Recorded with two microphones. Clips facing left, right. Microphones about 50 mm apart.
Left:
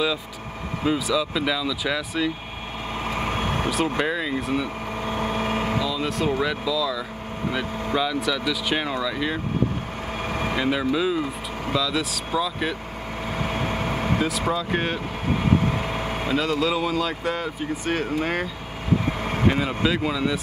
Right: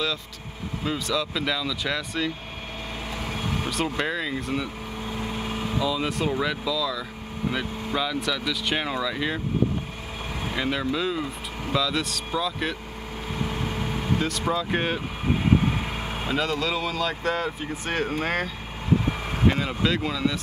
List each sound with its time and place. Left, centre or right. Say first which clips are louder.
0.8 s speech: left 4 dB; centre
3.2 s vehicle: left 4 dB; left
4.0 s speech: left 3 dB; centre
5.0 s vehicle: left 6 dB; left
5.8 s speech: left 1 dB; centre
10.6 s speech: left 2 dB; centre
13.4 s vehicle: left 3 dB; left
14.5 s speech: left 1 dB; centre
16.3 s speech: left 3 dB; centre
19.5 s speech: left 2 dB; centre